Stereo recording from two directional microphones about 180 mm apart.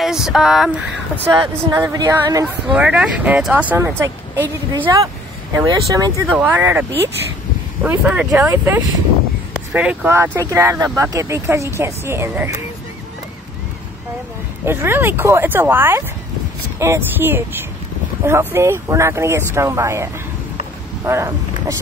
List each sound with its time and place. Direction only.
0.0 s speech: 5° right (ahead or behind)
1.4 s speech: 20° right (ahead or behind)
2.4 s speech: 5° right (ahead or behind)
4.7 s speech: 25° right (ahead or behind)
14.6 s speech: 15° right (ahead or behind)